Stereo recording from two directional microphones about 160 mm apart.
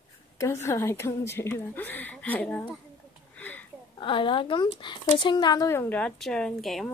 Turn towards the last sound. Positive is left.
turn(degrees=0)  # may be behind; listen again after turning